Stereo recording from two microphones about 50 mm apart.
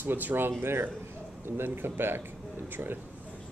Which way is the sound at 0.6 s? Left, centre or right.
Right.